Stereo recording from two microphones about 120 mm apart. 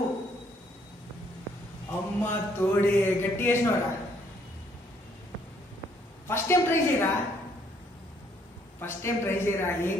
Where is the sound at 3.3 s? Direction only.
20° left (ahead or behind).